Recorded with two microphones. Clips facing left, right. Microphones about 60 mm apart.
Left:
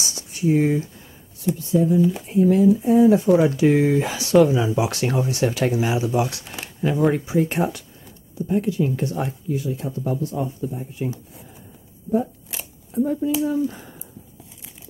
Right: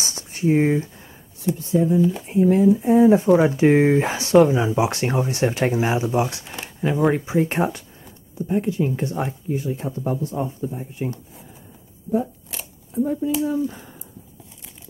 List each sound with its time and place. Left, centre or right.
0.0 s a sound: right
1.6 s speech: right
2.0 s speech: centre
2.2 s speech: right
3.3 s speech: centre
3.5 s speech: right
10.3 s speech: right
12.1 s speech: centre